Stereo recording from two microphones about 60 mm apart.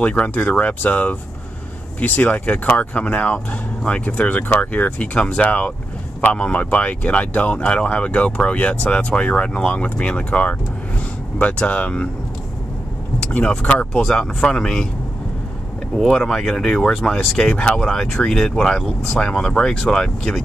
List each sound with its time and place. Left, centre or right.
0.0 s speech: left
13.2 s vehicle: left
13.5 s speech: centre
16.1 s speech: centre